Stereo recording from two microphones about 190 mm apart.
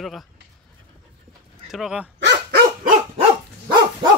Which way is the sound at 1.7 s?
Centre (ahead or behind).